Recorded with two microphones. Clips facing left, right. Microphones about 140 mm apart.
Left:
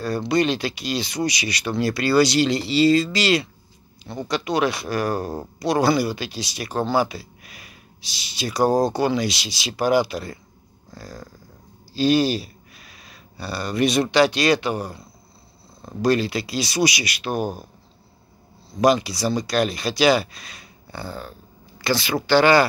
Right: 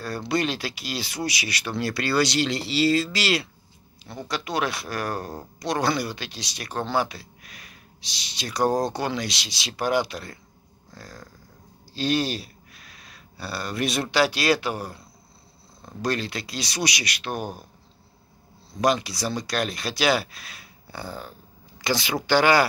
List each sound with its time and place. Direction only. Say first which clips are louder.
0.0 s speech: left 5 dB; centre (ahead or behind)
10.9 s a sound: left 5 dB; 5° left (ahead or behind)
14.1 s speech: left 1 dB; 5° right (ahead or behind)
18.8 s speech: left 5 dB; centre (ahead or behind)